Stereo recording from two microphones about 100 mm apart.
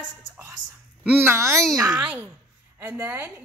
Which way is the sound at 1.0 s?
20° right (ahead or behind).